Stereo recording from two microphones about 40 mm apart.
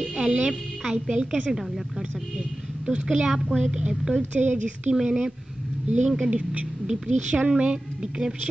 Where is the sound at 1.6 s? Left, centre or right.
Centre.